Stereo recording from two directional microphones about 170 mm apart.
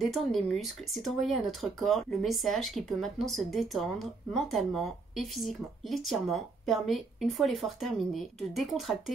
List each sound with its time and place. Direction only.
0.0 s speech: centre (ahead or behind)